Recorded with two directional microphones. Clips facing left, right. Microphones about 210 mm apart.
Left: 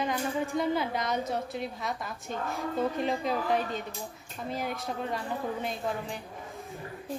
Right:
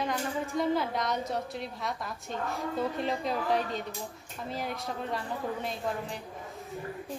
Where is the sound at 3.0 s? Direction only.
Centre (ahead or behind).